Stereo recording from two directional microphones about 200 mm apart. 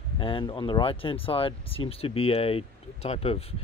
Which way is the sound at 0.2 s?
25° left (ahead or behind).